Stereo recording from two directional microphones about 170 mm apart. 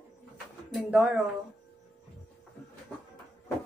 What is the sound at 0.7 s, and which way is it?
Speech, centre (ahead or behind).